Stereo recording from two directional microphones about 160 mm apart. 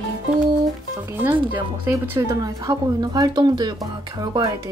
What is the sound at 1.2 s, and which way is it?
Speech, 10° right (ahead or behind).